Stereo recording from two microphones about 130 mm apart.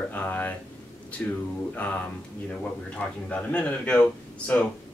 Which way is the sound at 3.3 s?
10° left (ahead or behind).